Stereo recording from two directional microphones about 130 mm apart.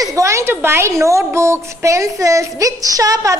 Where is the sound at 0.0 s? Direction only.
25° right (ahead or behind).